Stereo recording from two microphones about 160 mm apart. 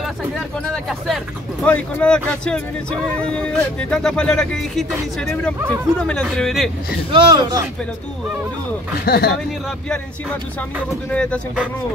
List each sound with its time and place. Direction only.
0.8 s speech: centre (ahead or behind)
7.1 s speech: 25° right (ahead or behind)
9.0 s speech: 80° left
11.1 s speech: 5° left (ahead or behind)